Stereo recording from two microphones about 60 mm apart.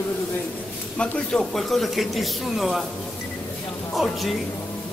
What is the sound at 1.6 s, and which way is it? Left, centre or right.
Speech, centre.